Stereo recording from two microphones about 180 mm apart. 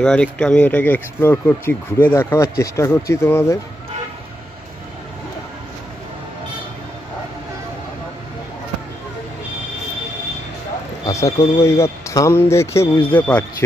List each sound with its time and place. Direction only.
0.0 s speech: 5° left (ahead or behind)
11.1 s a sound: 20° left (ahead or behind)
11.6 s speech: 15° left (ahead or behind)